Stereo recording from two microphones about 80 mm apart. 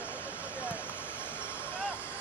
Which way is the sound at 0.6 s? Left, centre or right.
Centre.